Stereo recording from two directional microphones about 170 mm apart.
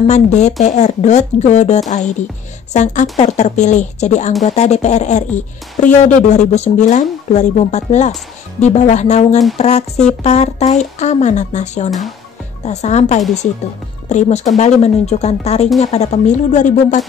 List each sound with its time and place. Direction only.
0.0 s speech: 40° left (ahead or behind)